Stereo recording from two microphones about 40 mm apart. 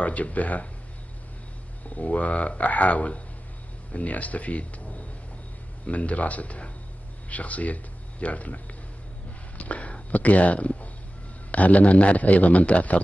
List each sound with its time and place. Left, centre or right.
0.0 s a man's voice: left
2.0 s a man's voice: left
9.6 s a man's voice: left